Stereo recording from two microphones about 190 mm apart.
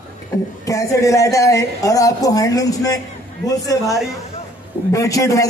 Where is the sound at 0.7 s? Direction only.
15° left (ahead or behind).